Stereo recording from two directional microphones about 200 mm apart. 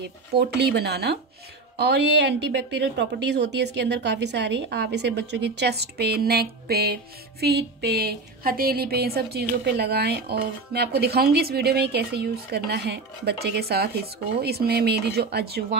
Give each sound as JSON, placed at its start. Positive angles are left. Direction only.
{"t": 0.3, "sound": "speech", "side_deg": -55}